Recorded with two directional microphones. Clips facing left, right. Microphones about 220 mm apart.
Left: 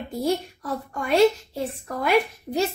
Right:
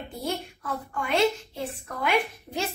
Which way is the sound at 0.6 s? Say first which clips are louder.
Left 3 dB; 40° left (ahead or behind).